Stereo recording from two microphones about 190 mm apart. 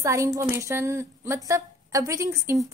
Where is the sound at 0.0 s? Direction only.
15° right (ahead or behind).